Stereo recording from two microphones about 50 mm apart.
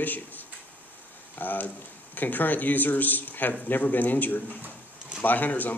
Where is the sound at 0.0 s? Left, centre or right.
Left.